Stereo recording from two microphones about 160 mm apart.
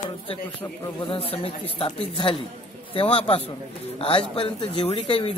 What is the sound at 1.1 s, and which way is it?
Speech, 35° left (ahead or behind).